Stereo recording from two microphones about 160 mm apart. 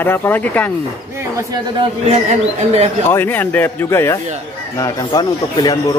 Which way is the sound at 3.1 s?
10° left (ahead or behind).